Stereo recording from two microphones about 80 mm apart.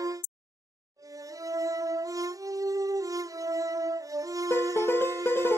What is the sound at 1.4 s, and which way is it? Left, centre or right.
Music, right.